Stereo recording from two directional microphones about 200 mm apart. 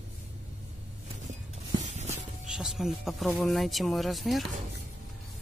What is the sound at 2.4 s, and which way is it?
Speech, 5° right (ahead or behind).